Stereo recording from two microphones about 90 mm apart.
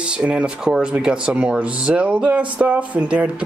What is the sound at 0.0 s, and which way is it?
Speech, 10° right (ahead or behind).